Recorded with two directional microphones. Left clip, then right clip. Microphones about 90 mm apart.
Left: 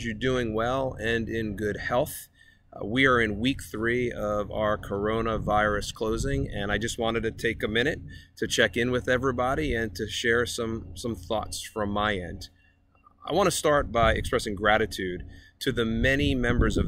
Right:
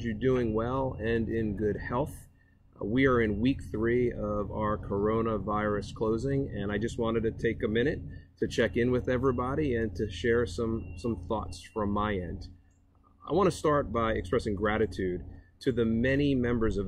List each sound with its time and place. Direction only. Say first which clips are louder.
0.0 s speech: left 1 dB; 15° left (ahead or behind)